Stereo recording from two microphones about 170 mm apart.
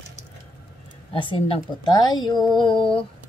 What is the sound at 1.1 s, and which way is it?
A woman's voice, 30° left (ahead or behind).